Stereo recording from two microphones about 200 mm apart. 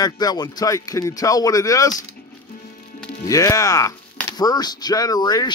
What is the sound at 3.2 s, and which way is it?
Speech, 15° left (ahead or behind).